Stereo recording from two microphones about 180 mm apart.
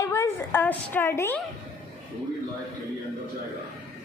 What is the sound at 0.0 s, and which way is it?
A woman's voice, 15° left (ahead or behind).